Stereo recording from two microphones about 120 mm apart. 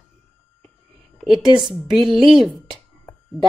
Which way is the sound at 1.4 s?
40° right (ahead or behind).